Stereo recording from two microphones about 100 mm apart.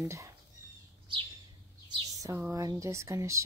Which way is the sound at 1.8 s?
45° right (ahead or behind).